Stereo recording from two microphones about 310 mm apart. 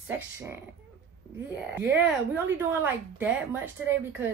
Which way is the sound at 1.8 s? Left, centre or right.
Centre.